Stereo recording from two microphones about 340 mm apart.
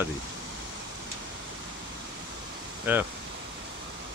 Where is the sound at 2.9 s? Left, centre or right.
Centre.